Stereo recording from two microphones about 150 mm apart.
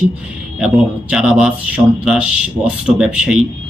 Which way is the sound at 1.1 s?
5° right (ahead or behind).